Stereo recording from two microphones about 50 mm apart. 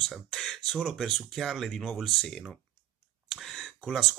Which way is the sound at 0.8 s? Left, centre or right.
Centre.